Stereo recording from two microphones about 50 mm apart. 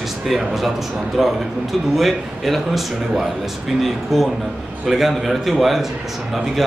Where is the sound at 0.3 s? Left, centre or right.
Centre.